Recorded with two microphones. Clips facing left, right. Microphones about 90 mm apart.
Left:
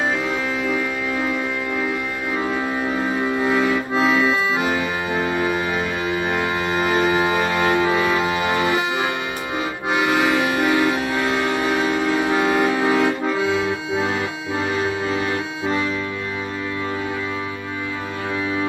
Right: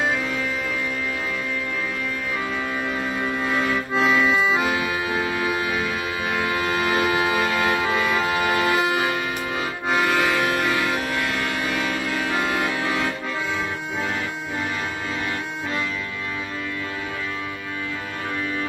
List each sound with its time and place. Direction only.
3.3 s accordion: centre (ahead or behind)
5.1 s music: centre (ahead or behind)
6.6 s music: centre (ahead or behind)
9.8 s accordion: 10° left (ahead or behind)
11.3 s music: 35° left (ahead or behind)
12.4 s music: centre (ahead or behind)
12.6 s accordion: 35° left (ahead or behind)